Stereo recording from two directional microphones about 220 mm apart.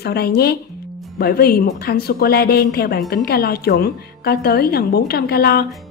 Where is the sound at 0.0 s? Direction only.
45° left (ahead or behind).